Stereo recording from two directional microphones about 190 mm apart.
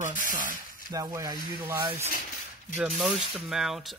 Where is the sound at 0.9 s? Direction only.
20° right (ahead or behind).